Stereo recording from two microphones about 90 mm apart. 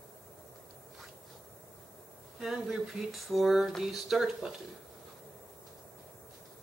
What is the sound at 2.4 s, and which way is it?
Speech, 5° right (ahead or behind).